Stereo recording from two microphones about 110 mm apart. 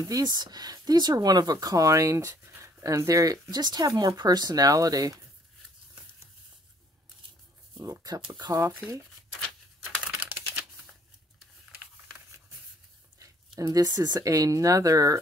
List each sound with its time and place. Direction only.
0.0 s speech: 35° right (ahead or behind)
7.7 s speech: 30° right (ahead or behind)
9.5 s a sound: 10° right (ahead or behind)
13.2 s speech: 35° right (ahead or behind)